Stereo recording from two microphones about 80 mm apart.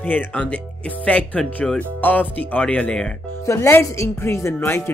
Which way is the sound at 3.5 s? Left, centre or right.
Left.